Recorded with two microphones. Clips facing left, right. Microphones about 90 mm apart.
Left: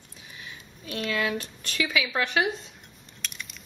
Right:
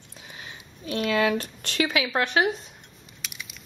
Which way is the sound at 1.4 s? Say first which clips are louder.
Right 4 dB; 55° right (ahead or behind).